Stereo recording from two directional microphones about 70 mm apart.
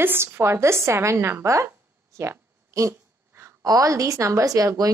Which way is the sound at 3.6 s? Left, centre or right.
Right.